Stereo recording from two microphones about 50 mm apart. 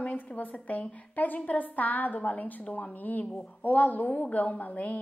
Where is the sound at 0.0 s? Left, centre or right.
Left.